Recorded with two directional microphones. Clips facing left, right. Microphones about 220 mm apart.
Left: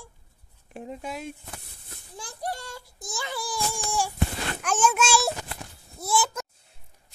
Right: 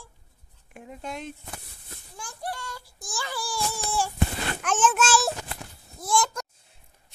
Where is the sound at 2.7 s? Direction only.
20° left (ahead or behind).